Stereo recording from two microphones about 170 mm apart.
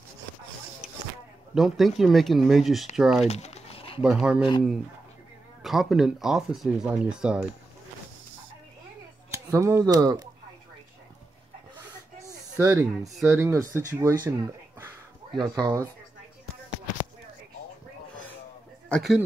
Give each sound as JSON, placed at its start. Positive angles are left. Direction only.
{"t": 1.5, "sound": "speech", "side_deg": 0}
{"t": 3.3, "sound": "crumpling", "side_deg": 40}
{"t": 4.0, "sound": "speech", "side_deg": -5}
{"t": 5.6, "sound": "speech", "side_deg": 0}
{"t": 9.3, "sound": "speech", "side_deg": -15}
{"t": 12.2, "sound": "a sound", "side_deg": -20}
{"t": 13.3, "sound": "speech", "side_deg": -15}
{"t": 18.9, "sound": "speech", "side_deg": 0}